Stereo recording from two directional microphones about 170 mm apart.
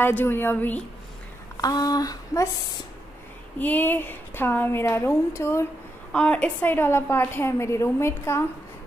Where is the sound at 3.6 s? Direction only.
10° left (ahead or behind).